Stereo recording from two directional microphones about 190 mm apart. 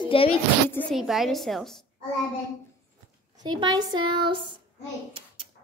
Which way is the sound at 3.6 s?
20° right (ahead or behind).